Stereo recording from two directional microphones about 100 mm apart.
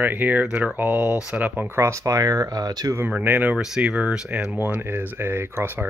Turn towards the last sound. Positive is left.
turn(degrees=-20)  # may be behind; listen again after turning